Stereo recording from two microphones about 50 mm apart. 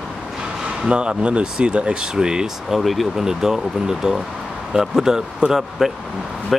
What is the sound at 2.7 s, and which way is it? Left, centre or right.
Speech, centre.